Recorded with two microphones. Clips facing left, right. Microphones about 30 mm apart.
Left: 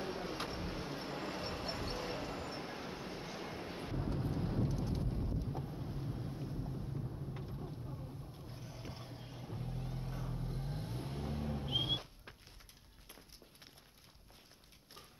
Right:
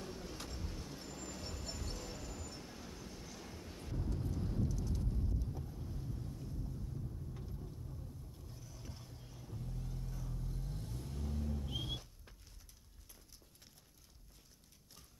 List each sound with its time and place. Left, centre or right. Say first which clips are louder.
0.0 s vehicle: left 7 dB; left